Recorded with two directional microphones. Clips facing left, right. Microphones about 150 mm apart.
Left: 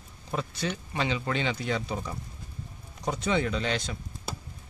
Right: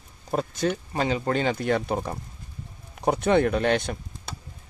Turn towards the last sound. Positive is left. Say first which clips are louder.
# right 7 dB
turn(degrees=-55)  # may be behind; listen again after turning